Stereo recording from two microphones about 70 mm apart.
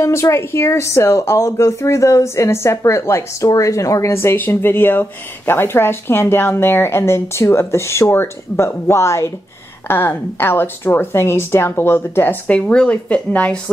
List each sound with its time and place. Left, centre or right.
0.0 s a woman's voice: left
3.4 s a woman's voice: left
9.8 s a woman's voice: left